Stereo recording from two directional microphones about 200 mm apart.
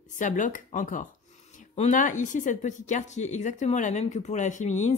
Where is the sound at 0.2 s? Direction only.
40° left (ahead or behind).